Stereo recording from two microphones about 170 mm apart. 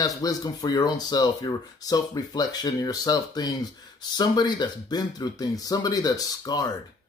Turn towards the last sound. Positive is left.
turn(degrees=20)  # may be behind; listen again after turning